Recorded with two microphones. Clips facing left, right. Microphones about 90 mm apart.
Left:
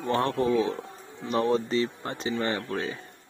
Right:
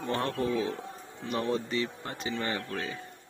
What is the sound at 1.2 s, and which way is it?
Speech, 30° left (ahead or behind).